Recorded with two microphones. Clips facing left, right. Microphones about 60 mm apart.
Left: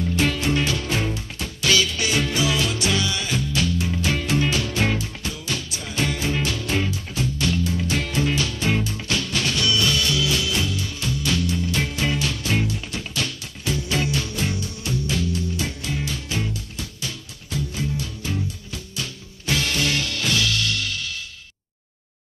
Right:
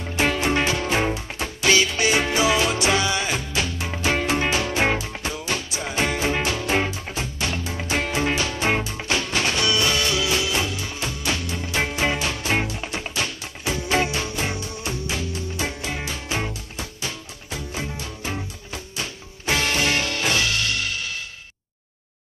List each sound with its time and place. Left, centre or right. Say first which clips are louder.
0.1 s music: right 3 dB; right